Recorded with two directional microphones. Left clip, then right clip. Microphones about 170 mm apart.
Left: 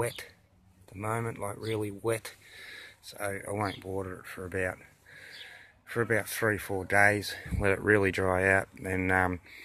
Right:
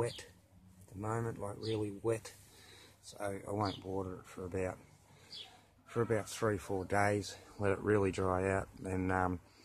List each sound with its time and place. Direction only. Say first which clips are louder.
1.0 s speech: left 6 dB; 20° left (ahead or behind); by 3.9 s centre (ahead or behind)
3.9 s speech: left 4 dB; 20° left (ahead or behind)
4.5 s speech: left 6 dB; centre (ahead or behind)
5.2 s a sound: left 4 dB; centre (ahead or behind)
6.0 s speech: left 7 dB; 10° left (ahead or behind)
6.9 s speech: left 9 dB; 5° left (ahead or behind)
7.6 s speech: left 7 dB; 15° left (ahead or behind)